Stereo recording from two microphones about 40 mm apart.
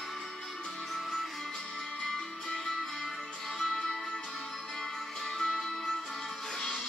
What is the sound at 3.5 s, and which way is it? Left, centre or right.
Music, centre.